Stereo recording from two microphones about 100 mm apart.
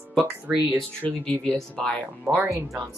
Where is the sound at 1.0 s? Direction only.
10° left (ahead or behind).